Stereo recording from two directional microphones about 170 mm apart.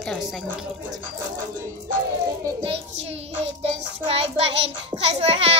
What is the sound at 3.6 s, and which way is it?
Child singing, 35° right (ahead or behind).